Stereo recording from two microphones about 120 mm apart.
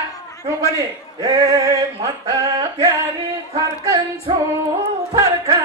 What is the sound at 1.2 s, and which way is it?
Male singing, 30° right (ahead or behind).